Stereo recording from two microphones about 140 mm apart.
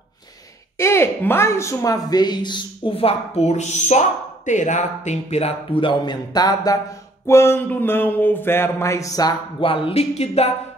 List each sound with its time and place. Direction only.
0.7 s a man's voice: 20° left (ahead or behind)
9.6 s speech: 40° left (ahead or behind)